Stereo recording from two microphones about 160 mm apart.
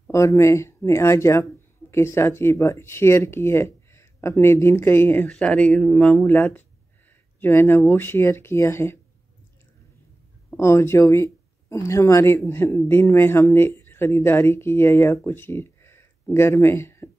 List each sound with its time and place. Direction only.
0.1 s speech: 20° left (ahead or behind)
10.5 s speech: 15° left (ahead or behind)